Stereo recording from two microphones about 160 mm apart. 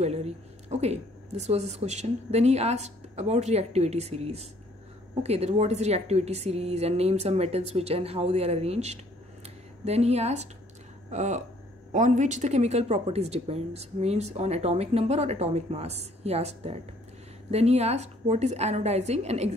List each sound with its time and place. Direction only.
0.0 s a woman's voice: 40° right (ahead or behind)